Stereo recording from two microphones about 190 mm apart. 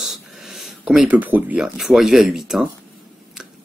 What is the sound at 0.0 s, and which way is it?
Speech, centre (ahead or behind).